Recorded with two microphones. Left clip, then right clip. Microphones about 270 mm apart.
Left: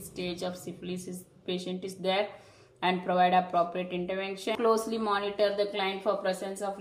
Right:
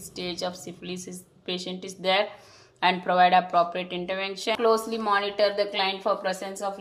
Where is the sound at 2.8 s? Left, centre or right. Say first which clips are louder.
Right 5 dB; right.